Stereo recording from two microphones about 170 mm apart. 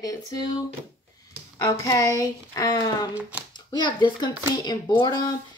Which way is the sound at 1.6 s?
20° left (ahead or behind).